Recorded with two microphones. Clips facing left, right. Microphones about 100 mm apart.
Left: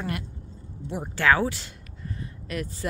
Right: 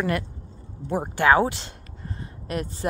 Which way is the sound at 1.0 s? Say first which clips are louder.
Right 3 dB; 20° right (ahead or behind).